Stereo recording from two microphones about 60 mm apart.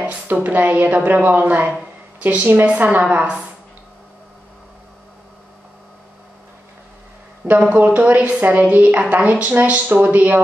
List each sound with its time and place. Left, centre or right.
0.0 s a woman's voice: right
7.7 s a woman's voice: right